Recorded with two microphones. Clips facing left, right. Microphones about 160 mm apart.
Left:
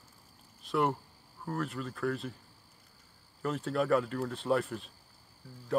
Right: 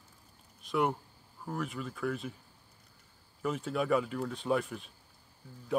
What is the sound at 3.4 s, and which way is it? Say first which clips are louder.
Speech: left 1 dB; centre (ahead or behind).